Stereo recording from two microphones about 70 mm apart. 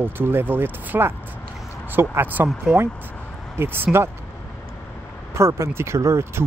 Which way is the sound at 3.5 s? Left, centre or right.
Right.